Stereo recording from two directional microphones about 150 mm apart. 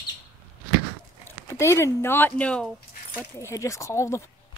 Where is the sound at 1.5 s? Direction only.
20° left (ahead or behind).